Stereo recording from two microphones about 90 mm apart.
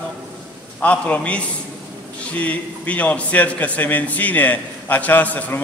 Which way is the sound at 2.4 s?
15° left (ahead or behind).